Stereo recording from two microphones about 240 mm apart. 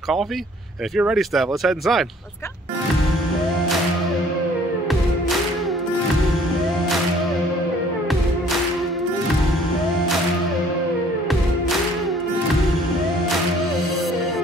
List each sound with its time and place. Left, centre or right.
0.9 s speech: centre